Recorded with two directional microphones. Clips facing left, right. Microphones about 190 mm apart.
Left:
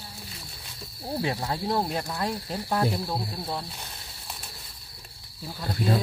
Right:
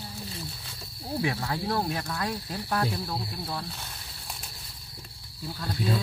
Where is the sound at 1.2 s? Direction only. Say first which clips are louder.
Left 1 dB; 20° left (ahead or behind).